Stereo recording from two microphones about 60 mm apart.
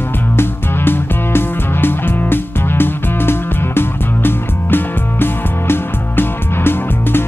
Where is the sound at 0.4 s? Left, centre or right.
Left.